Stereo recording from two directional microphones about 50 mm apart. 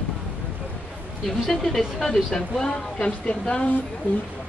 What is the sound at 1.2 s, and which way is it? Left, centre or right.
A woman's voice, centre.